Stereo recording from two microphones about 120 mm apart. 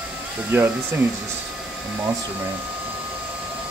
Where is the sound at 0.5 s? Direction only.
15° right (ahead or behind).